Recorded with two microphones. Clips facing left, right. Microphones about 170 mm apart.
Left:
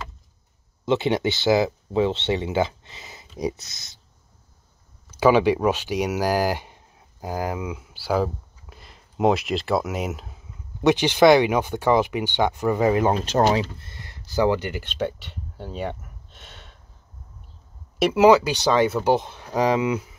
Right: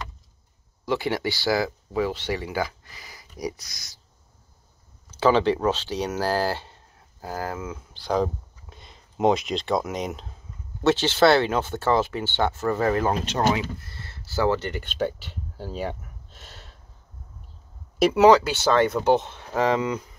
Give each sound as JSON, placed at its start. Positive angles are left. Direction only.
{"t": 0.8, "sound": "speech", "side_deg": 20}
{"t": 5.2, "sound": "speech", "side_deg": 10}
{"t": 13.1, "sound": "speech", "side_deg": 35}
{"t": 13.8, "sound": "speech", "side_deg": 15}
{"t": 14.9, "sound": "speech", "side_deg": 0}
{"t": 17.9, "sound": "speech", "side_deg": 5}